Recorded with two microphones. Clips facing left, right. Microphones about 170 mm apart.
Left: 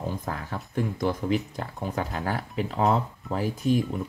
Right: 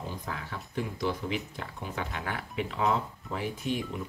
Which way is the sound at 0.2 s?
45° left (ahead or behind).